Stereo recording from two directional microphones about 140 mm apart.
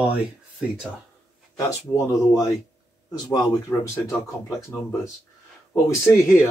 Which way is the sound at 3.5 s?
15° left (ahead or behind).